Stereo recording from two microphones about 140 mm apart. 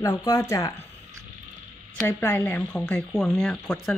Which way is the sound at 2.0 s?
15° left (ahead or behind).